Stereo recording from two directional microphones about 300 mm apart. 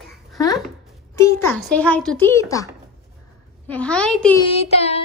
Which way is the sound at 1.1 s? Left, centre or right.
Centre.